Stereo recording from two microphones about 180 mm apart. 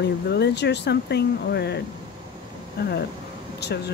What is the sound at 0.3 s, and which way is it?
Speech, 70° left (ahead or behind).